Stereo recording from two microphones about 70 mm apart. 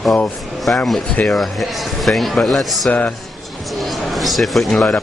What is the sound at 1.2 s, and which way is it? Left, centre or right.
Speech, centre.